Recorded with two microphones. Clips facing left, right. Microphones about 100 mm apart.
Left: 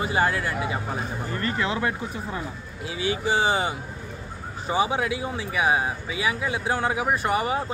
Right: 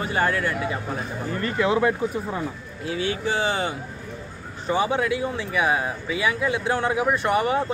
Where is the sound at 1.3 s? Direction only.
15° right (ahead or behind).